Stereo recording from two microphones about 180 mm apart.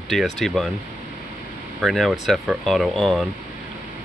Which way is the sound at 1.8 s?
Centre (ahead or behind).